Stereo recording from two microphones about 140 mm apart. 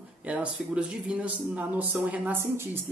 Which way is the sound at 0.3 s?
10° right (ahead or behind).